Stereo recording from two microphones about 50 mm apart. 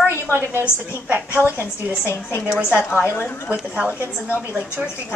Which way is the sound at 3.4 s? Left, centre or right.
Right.